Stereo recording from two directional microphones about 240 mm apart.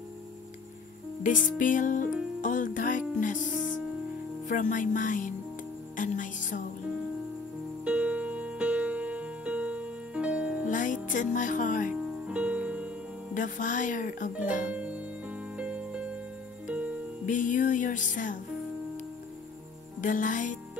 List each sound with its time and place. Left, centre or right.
1.2 s speech: left
2.4 s music: left
4.5 s speech: left
5.9 s music: left
7.8 s music: centre
10.7 s music: left
11.9 s music: centre
13.3 s speech: left
14.7 s music: centre
17.3 s music: left
20.0 s speech: left